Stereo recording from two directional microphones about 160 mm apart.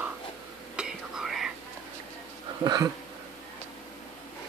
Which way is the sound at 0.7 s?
5° right (ahead or behind).